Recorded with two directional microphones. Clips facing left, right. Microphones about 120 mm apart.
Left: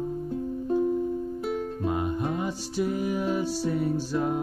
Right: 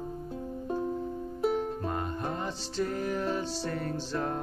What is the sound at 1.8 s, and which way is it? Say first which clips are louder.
Music: left 5 dB; 10° left (ahead or behind).